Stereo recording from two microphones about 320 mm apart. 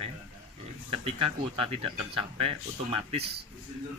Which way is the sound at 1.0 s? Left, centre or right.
Centre.